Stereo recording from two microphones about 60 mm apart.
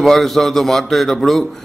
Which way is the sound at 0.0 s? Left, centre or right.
Centre.